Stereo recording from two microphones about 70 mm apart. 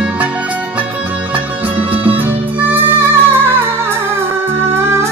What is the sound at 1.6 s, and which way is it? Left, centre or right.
Music, right.